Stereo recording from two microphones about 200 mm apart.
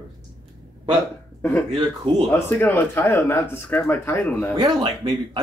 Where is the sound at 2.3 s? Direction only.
10° left (ahead or behind).